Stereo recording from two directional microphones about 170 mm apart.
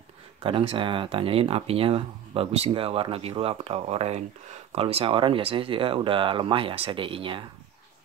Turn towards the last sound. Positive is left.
turn(degrees=-30)  # may be behind; listen again after turning